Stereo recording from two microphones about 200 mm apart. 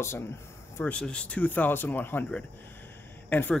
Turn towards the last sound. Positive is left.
turn(degrees=10)  # may be behind; listen again after turning